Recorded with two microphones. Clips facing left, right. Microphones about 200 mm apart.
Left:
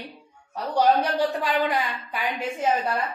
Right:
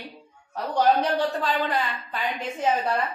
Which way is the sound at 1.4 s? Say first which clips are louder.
Left 1 dB; 10° left (ahead or behind).